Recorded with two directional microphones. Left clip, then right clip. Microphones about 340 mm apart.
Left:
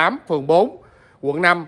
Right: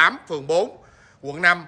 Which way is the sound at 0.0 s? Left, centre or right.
Centre.